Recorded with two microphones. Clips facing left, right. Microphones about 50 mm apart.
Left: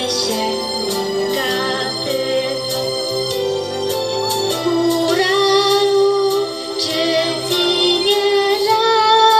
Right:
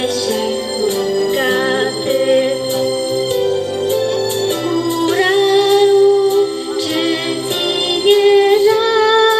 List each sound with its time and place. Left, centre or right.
4.8 s music: centre
8.0 s music: centre
8.5 s humming: centre
8.9 s female singing: centre